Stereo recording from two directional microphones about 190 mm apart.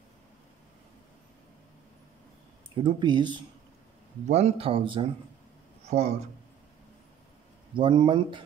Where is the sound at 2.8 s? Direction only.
25° right (ahead or behind).